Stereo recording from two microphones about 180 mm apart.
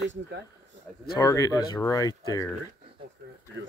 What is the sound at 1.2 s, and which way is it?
Speech, 20° left (ahead or behind).